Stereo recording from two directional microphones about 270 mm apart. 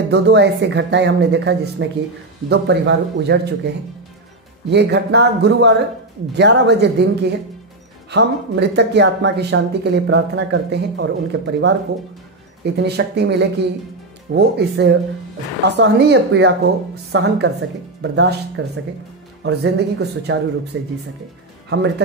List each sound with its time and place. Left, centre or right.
0.1 s speech: right
4.6 s speech: right